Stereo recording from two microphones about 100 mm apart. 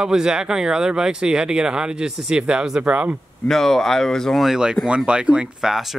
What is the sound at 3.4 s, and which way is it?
Speech, 5° left (ahead or behind).